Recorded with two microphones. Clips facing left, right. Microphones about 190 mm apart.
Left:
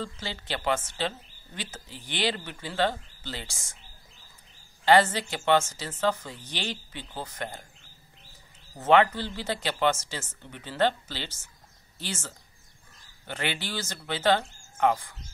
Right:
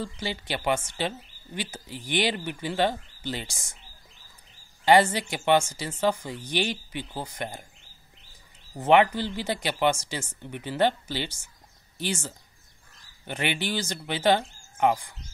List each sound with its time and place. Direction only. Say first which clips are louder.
0.0 s speech: right 3 dB; 15° right (ahead or behind)
4.8 s speech: right 1 dB; 15° right (ahead or behind)
8.7 s speech: right 1 dB; 15° right (ahead or behind)
13.3 s speech: right 4 dB; 15° right (ahead or behind)